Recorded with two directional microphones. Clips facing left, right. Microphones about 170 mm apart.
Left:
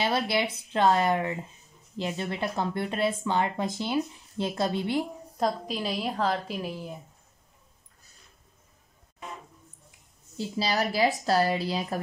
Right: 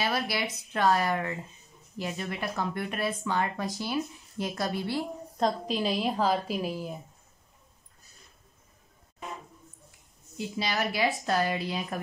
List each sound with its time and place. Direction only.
0.0 s speech: 25° left (ahead or behind)
5.4 s a woman's voice: centre (ahead or behind)
10.3 s a woman's voice: 35° left (ahead or behind)